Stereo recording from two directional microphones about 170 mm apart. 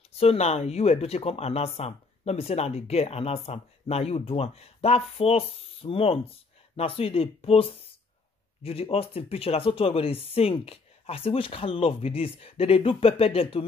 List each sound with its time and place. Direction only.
0.1 s speech: 35° left (ahead or behind)